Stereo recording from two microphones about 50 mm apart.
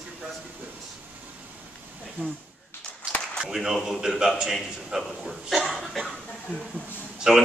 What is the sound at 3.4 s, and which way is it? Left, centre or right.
Speech, centre.